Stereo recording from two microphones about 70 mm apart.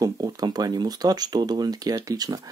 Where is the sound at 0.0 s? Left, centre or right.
Right.